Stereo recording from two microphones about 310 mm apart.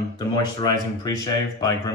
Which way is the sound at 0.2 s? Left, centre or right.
Centre.